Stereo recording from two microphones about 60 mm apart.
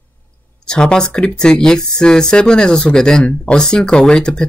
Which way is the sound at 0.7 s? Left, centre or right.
Centre.